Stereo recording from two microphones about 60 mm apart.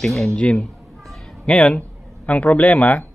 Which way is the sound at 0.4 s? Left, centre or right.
Centre.